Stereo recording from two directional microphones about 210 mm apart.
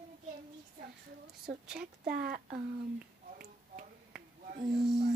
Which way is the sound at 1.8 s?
45° right (ahead or behind).